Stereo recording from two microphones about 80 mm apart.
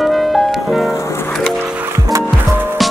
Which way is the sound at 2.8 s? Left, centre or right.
Centre.